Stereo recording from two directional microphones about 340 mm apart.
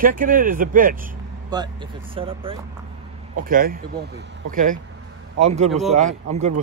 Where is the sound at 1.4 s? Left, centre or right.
Centre.